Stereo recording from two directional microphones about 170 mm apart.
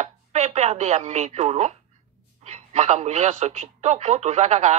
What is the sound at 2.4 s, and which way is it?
Speech, 40° right (ahead or behind).